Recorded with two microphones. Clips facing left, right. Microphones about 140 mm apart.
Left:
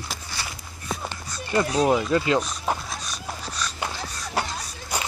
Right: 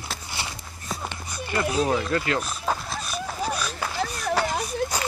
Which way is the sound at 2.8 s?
5° right (ahead or behind).